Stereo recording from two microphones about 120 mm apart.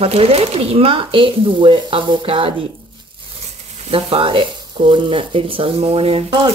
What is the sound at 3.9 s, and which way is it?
Speech, 50° right (ahead or behind).